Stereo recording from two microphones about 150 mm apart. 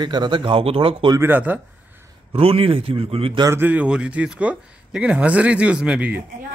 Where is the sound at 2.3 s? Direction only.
40° right (ahead or behind).